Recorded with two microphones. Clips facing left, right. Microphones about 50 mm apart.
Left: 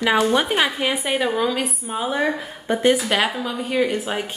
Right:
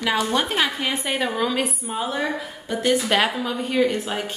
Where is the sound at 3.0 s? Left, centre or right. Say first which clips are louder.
Even; centre.